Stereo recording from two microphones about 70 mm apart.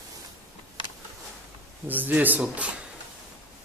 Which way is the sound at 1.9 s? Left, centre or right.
Right.